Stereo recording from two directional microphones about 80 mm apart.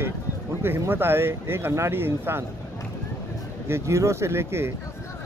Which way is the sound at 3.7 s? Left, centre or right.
Right.